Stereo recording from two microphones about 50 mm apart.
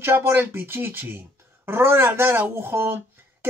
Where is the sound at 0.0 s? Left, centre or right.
Right.